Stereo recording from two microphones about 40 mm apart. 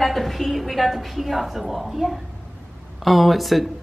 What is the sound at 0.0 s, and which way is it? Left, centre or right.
A woman's voice, centre.